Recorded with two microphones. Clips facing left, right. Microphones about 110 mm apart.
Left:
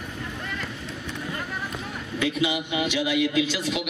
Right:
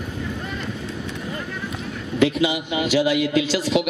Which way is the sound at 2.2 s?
90° right.